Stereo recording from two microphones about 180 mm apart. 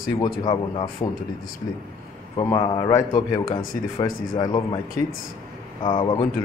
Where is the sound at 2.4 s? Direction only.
25° left (ahead or behind).